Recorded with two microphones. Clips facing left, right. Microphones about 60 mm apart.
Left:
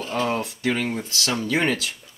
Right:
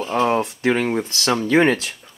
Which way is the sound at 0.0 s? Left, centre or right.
Right.